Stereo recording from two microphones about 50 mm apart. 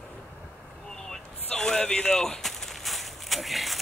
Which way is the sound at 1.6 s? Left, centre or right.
Centre.